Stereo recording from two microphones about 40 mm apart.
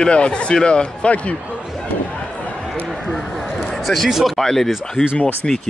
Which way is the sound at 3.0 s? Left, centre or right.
Centre.